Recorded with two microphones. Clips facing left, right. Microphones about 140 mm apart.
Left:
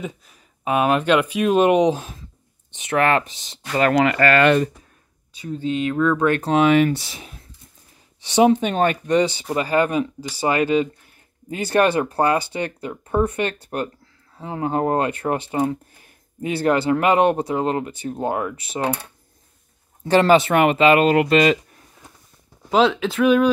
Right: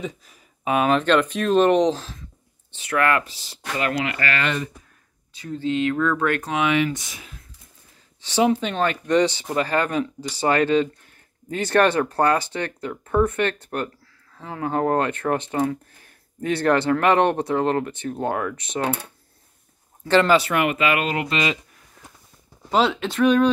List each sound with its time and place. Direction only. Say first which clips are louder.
0.0 s speech: even; centre (ahead or behind); by 3.6 s 20° left (ahead or behind)
3.9 s speech: left 9 dB; 50° left (ahead or behind)
5.4 s speech: even; 15° left (ahead or behind)
6.5 s speech: left 8 dB; 35° left (ahead or behind)
8.2 s speech: left 4 dB; 15° left (ahead or behind)
15.5 s speech: left 1 dB; 25° left (ahead or behind)
16.3 s speech: even; 10° left (ahead or behind)
20.1 s speech: left 3 dB; 20° left (ahead or behind)
21.1 s speech: left 8 dB; 50° left (ahead or behind)
22.7 s speech: left 3 dB; centre (ahead or behind)